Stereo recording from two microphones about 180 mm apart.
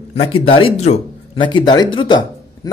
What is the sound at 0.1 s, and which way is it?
Speech, 30° left (ahead or behind).